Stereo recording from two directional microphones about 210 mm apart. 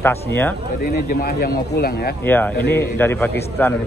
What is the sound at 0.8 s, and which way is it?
A man's voice, 45° left (ahead or behind).